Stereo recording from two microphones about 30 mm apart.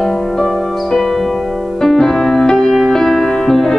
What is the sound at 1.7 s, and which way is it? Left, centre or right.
Music, centre.